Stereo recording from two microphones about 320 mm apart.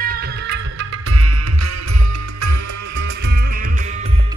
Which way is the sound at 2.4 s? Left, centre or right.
Right.